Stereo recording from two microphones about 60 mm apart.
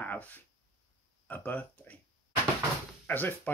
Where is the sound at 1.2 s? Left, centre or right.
Left.